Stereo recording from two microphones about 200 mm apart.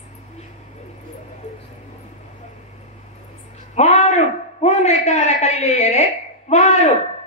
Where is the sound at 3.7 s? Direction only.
35° left (ahead or behind).